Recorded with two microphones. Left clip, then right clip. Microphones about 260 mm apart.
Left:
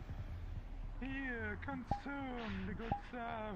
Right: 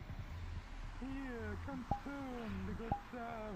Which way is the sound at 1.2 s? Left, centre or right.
Left.